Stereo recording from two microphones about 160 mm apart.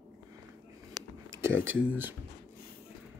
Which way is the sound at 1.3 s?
15° right (ahead or behind).